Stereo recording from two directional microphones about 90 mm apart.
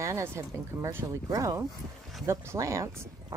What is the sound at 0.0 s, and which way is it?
Speech, 30° right (ahead or behind).